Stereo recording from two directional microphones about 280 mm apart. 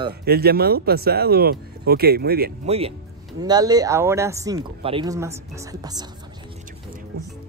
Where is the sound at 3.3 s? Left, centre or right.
Centre.